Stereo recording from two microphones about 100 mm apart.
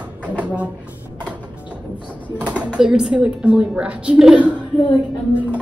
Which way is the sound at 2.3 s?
15° right (ahead or behind).